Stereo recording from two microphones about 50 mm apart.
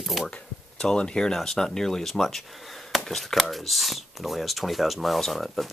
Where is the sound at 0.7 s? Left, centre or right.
Centre.